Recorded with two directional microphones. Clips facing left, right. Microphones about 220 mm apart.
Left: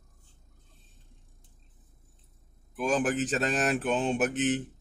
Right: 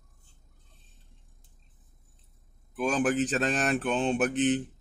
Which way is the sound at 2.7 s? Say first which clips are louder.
Right 1 dB; centre (ahead or behind).